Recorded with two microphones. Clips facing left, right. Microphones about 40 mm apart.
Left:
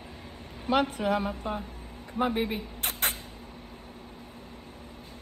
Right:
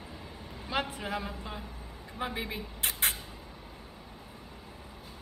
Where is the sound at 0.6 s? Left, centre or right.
Left.